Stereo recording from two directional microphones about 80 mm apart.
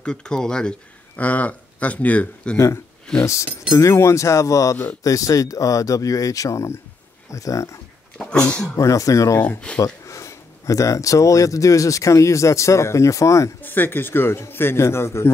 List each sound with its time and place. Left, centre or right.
0.0 s speech: centre
2.5 s speech: left
8.3 s speech: centre
8.7 s speech: left
9.7 s speech: centre
10.0 s speech: left
13.6 s speech: left